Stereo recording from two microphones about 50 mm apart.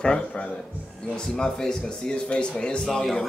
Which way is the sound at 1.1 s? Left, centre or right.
Centre.